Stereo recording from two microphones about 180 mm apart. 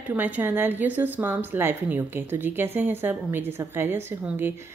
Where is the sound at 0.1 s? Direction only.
10° right (ahead or behind).